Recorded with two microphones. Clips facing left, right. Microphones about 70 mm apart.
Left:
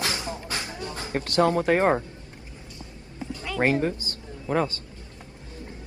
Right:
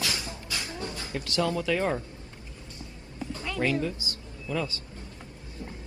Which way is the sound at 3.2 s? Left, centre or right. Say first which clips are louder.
Left 1 dB; left.